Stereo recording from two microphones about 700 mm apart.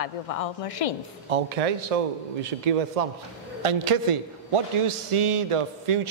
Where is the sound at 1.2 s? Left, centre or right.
Right.